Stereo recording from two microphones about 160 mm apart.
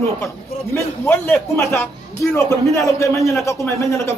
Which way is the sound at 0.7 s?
15° left (ahead or behind).